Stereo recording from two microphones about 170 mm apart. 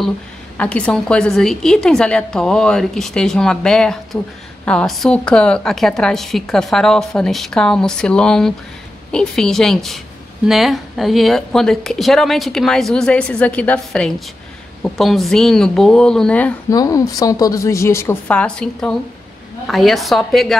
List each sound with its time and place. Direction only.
0.6 s a woman's voice: 5° left (ahead or behind)
16.7 s a woman's voice: 20° left (ahead or behind); by 20.5 s centre (ahead or behind)